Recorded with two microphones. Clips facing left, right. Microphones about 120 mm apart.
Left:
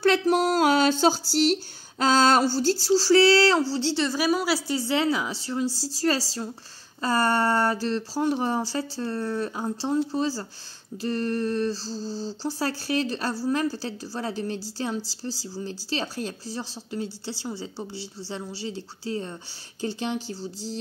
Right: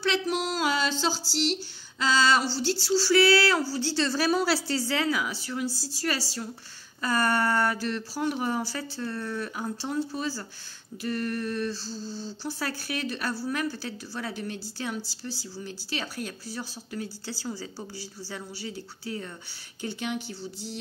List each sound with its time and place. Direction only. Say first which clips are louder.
0.0 s a woman's voice: left 7 dB; 45° left (ahead or behind); by 4.6 s 10° left (ahead or behind)
4.6 s speech: left 3 dB; 20° left (ahead or behind)
5.7 s speech: left 4 dB; 90° left
5.9 s a sound: left 7 dB; 35° left (ahead or behind)
15.5 s speech: left 6 dB; 30° left (ahead or behind)
19.8 s a sound: left 3 dB; 30° left (ahead or behind)